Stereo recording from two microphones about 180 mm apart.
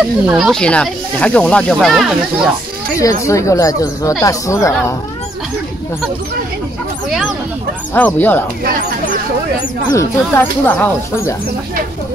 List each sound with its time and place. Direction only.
0.0 s speech: 5° right (ahead or behind)
3.0 s speech: 15° left (ahead or behind)
7.9 s speech: 10° left (ahead or behind)
9.9 s speech: 10° left (ahead or behind)